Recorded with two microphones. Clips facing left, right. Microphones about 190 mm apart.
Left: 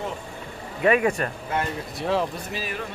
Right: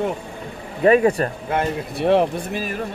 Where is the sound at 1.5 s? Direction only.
65° right (ahead or behind); by 2.8 s 45° right (ahead or behind).